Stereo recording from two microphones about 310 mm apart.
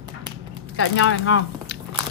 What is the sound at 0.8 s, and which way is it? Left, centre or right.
Speech, left.